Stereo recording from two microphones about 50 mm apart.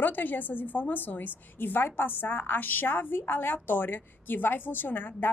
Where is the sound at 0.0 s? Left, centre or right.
Left.